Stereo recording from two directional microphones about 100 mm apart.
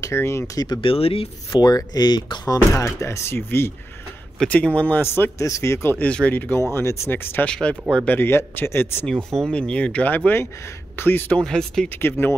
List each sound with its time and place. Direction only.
0.0 s speech: 25° left (ahead or behind)
0.6 s speech: 45° left (ahead or behind)
0.8 s speech: 75° left (ahead or behind)
1.5 s speech: 45° left (ahead or behind); by 3.7 s 25° left (ahead or behind)
4.4 s speech: 15° left (ahead or behind)
5.4 s speech: 30° left (ahead or behind)
7.4 s speech: 10° left (ahead or behind)
8.2 s speech: 25° left (ahead or behind)
9.1 s speech: 5° left (ahead or behind)
12.0 s speech: 25° left (ahead or behind)